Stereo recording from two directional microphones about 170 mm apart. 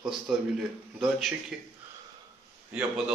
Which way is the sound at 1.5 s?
Centre (ahead or behind).